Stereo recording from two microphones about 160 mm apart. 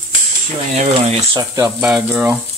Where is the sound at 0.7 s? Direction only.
45° right (ahead or behind).